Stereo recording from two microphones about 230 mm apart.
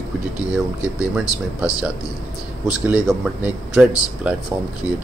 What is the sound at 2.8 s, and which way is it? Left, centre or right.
Speech, centre.